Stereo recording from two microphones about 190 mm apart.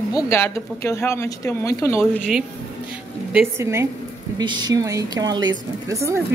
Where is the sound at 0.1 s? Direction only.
15° left (ahead or behind).